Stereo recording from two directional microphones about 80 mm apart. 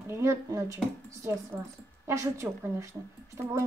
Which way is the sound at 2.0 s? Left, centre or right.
Right.